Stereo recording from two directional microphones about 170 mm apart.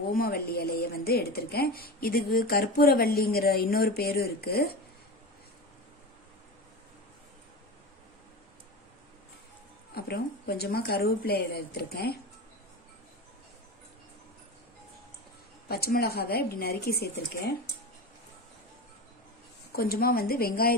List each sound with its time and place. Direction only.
0.1 s a woman's voice: 65° left (ahead or behind)
9.9 s speech: 65° left (ahead or behind)
15.7 s a woman's voice: 65° left (ahead or behind)
19.7 s a woman's voice: 60° left (ahead or behind)